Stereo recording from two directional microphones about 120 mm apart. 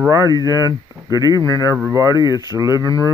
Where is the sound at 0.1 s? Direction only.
30° right (ahead or behind).